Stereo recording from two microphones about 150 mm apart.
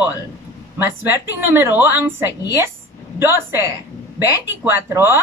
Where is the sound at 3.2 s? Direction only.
15° right (ahead or behind).